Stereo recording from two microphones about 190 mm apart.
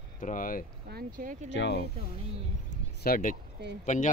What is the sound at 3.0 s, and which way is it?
Speech, 50° left (ahead or behind).